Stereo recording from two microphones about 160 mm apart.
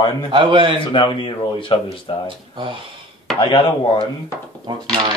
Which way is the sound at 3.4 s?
35° left (ahead or behind).